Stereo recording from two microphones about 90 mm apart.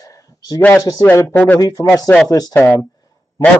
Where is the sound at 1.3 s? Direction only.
20° left (ahead or behind).